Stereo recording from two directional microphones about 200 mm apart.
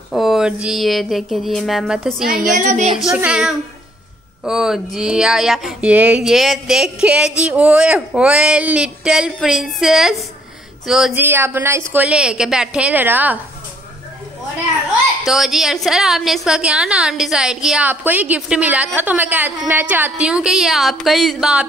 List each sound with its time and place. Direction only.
0.1 s a woman's voice: centre (ahead or behind)
2.5 s a woman's voice: 40° right (ahead or behind)
3.0 s a woman's voice: 5° right (ahead or behind)
15.2 s a woman's voice: centre (ahead or behind)